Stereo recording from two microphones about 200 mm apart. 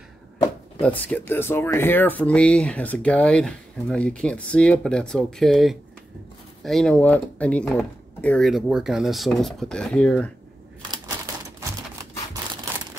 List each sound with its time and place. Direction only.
0.7 s speech: 5° left (ahead or behind)